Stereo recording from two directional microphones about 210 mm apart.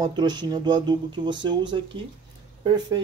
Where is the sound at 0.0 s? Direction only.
20° right (ahead or behind).